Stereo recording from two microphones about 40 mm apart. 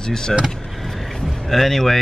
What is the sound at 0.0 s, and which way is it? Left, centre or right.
Speech, centre.